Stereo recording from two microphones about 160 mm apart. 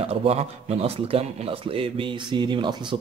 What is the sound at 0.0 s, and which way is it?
A man's voice, 40° right (ahead or behind).